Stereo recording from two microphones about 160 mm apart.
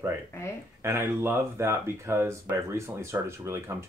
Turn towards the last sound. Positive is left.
turn(degrees=-15)  # may be behind; listen again after turning